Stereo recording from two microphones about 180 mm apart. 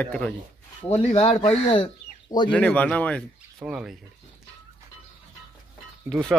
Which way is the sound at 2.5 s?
10° left (ahead or behind).